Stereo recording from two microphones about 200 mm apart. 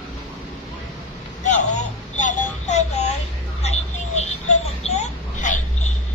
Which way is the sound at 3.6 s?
35° left (ahead or behind).